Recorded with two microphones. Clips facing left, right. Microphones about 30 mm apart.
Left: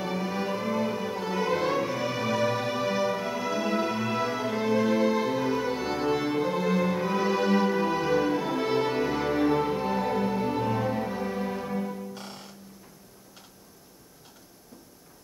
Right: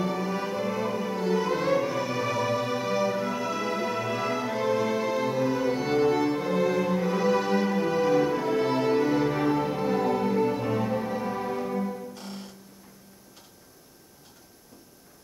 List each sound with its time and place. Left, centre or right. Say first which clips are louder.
0.0 s music: right 1 dB; centre
12.1 s music: even; centre